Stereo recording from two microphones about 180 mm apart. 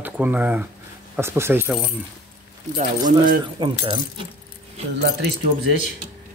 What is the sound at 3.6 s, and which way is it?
Speech, 25° right (ahead or behind).